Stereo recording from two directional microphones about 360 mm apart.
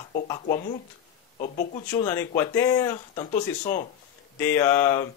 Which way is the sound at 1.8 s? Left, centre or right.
Centre.